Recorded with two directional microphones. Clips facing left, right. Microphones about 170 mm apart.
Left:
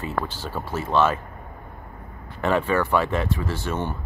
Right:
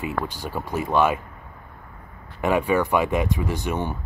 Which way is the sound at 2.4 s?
10° right (ahead or behind).